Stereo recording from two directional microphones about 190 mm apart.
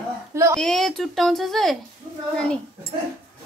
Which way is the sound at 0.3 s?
15° right (ahead or behind).